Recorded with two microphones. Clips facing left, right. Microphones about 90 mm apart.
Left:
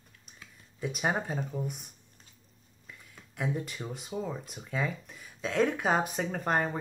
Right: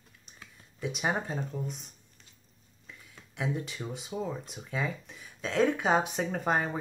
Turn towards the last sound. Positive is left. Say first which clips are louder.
# even
turn(degrees=0)  # may be behind; listen again after turning